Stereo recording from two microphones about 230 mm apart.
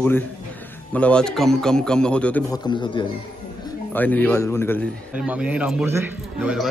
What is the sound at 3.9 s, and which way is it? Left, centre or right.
Speech, centre.